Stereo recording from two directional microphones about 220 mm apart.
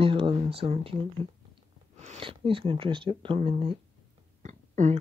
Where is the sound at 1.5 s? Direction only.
30° right (ahead or behind).